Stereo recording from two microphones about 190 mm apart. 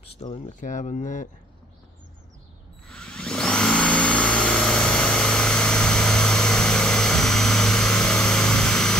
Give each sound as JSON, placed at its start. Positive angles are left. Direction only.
{"t": 0.0, "sound": "speech", "side_deg": 30}
{"t": 2.9, "sound": "vacuum cleaner", "side_deg": 5}